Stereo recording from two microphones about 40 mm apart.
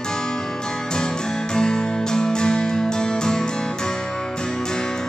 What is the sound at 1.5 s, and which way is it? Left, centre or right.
Music, centre.